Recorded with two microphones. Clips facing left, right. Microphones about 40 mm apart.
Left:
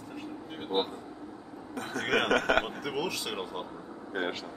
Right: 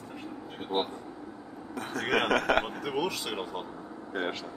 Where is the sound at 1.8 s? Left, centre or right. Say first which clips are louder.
Even; centre.